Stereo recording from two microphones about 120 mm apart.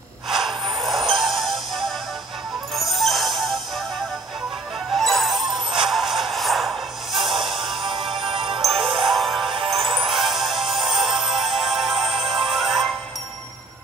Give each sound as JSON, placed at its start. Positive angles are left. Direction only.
{"t": 0.3, "sound": "a sound", "side_deg": 0}
{"t": 1.1, "sound": "music", "side_deg": 0}
{"t": 4.9, "sound": "music", "side_deg": 0}
{"t": 7.7, "sound": "music", "side_deg": -50}
{"t": 9.1, "sound": "music", "side_deg": 0}
{"t": 9.4, "sound": "music", "side_deg": -50}
{"t": 10.1, "sound": "music", "side_deg": 0}
{"t": 12.2, "sound": "music", "side_deg": -50}
{"t": 12.5, "sound": "music", "side_deg": 0}